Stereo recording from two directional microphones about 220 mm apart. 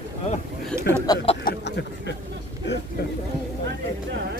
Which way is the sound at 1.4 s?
50° left (ahead or behind).